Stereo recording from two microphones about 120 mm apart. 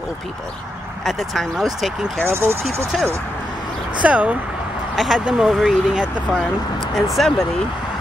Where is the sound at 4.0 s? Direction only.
10° right (ahead or behind).